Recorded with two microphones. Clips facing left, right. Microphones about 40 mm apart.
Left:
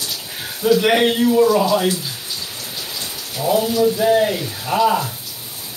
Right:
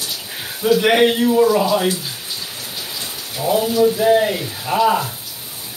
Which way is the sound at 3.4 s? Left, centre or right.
Centre.